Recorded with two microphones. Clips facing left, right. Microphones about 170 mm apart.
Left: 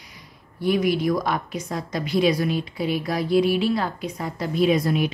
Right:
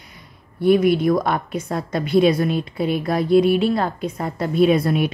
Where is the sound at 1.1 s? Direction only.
55° right (ahead or behind).